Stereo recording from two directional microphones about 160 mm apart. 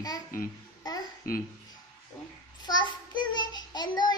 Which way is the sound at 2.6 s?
25° left (ahead or behind).